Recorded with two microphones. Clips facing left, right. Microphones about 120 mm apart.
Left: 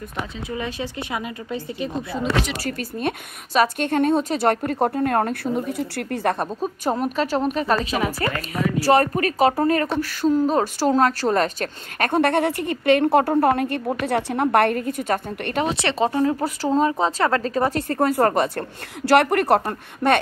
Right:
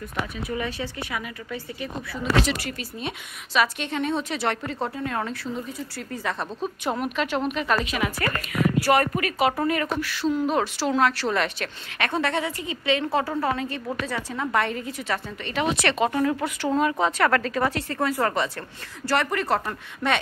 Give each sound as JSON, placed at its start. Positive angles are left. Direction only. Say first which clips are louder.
{"t": 0.5, "sound": "speech", "louder": "left 1 dB", "side_deg": 20}
{"t": 2.6, "sound": "speech", "louder": "left 7 dB", "side_deg": 50}
{"t": 6.3, "sound": "a woman's voice", "louder": "left 4 dB", "side_deg": 45}
{"t": 15.7, "sound": "a woman's voice", "louder": "left 2 dB", "side_deg": 30}